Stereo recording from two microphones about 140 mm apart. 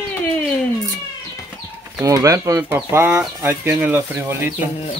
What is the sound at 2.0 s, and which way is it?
Speech, 25° right (ahead or behind).